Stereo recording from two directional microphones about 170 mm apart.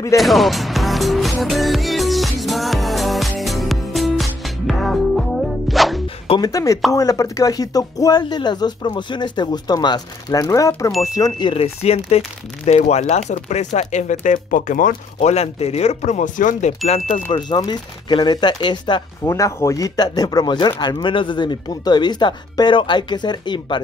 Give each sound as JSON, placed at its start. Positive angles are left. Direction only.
{"t": 0.2, "sound": "music", "side_deg": 0}
{"t": 6.2, "sound": "speech", "side_deg": 30}
{"t": 6.5, "sound": "speech", "side_deg": 20}
{"t": 17.3, "sound": "speech", "side_deg": 25}